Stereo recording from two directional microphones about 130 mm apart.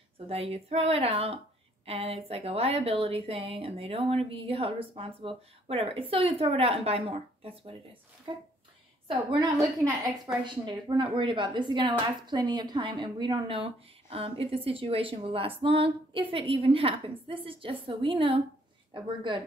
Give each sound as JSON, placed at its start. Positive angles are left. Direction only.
{"t": 0.3, "sound": "a woman's voice", "side_deg": -50}
{"t": 10.2, "sound": "a woman's voice", "side_deg": -35}